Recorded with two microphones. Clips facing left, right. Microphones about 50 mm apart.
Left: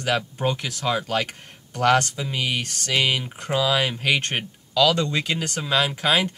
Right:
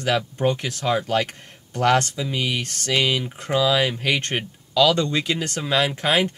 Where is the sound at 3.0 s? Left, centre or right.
Centre.